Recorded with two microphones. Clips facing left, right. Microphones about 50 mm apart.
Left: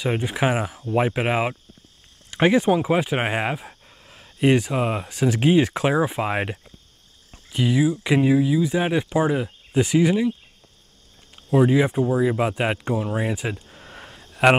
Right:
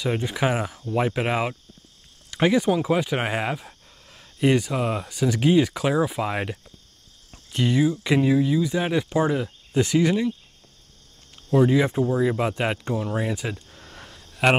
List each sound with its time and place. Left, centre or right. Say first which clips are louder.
0.0 s speech: left 1 dB; left
7.2 s speech: left 1 dB; centre
11.5 s speech: left 1 dB; centre